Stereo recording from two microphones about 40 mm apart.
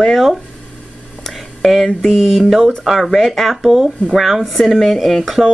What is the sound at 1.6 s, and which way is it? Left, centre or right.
Speech, centre.